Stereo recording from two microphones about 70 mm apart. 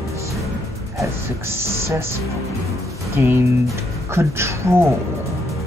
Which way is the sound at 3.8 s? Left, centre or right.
Right.